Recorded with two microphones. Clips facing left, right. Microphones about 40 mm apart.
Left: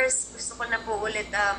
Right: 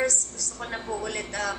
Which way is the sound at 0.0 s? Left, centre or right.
Centre.